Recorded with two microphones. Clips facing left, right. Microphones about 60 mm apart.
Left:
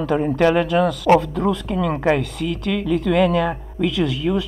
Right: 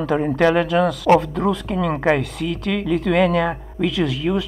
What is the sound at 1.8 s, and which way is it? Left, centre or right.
Speech, right.